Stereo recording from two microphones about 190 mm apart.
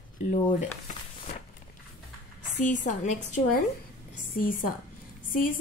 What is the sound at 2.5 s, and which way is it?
Speech, 40° left (ahead or behind).